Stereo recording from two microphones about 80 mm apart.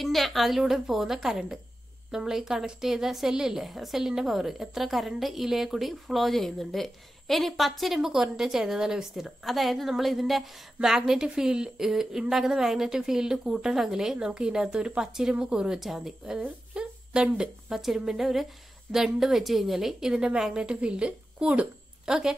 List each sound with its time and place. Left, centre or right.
0.0 s a woman's voice: centre